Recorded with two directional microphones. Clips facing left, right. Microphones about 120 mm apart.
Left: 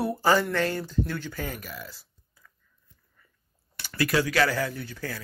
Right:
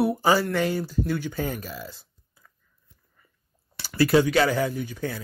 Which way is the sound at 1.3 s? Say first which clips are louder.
Right 5 dB; 30° right (ahead or behind).